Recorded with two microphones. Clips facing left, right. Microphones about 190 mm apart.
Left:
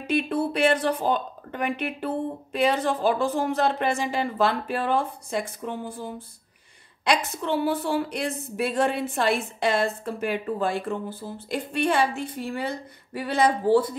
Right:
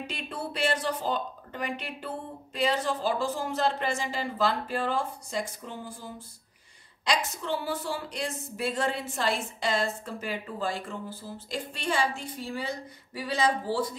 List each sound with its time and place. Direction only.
0.0 s a woman's voice: 60° left (ahead or behind)